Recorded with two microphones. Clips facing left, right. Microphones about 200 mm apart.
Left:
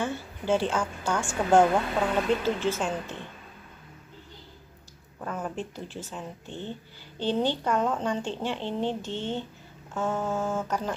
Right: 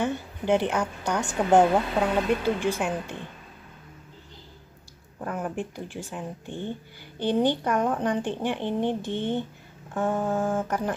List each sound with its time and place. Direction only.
0.0 s a woman's voice: 20° right (ahead or behind)
5.2 s speech: 15° right (ahead or behind)